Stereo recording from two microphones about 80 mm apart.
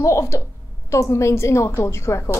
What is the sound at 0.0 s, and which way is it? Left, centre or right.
A woman's voice, left.